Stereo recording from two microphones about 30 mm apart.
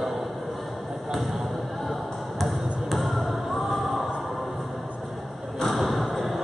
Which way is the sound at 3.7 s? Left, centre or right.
Centre.